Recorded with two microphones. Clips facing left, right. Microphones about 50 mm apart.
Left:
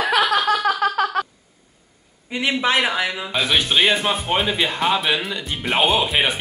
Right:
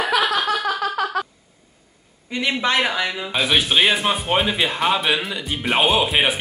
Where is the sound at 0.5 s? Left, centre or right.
Left.